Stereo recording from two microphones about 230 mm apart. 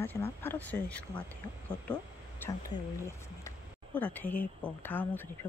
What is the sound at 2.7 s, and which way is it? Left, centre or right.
Speech, centre.